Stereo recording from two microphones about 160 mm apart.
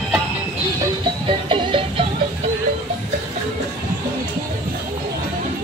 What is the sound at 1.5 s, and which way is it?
Music, 35° right (ahead or behind).